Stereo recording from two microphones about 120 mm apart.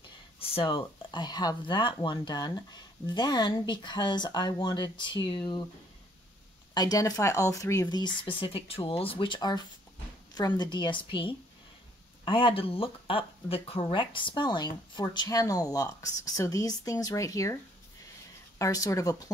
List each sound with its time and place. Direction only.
0.4 s speech: 55° left (ahead or behind)
6.7 s speech: 35° left (ahead or behind)
18.6 s speech: 25° left (ahead or behind)